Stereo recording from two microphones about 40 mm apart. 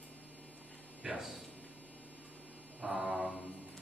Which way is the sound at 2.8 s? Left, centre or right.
Centre.